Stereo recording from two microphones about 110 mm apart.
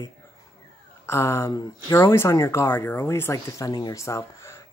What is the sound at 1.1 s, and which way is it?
Speech, 25° left (ahead or behind).